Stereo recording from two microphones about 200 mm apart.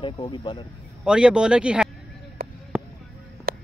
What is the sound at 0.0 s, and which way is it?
Speech, 25° left (ahead or behind).